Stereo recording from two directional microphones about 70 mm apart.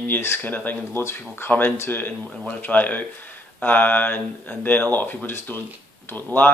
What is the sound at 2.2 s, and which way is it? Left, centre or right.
Speech, centre.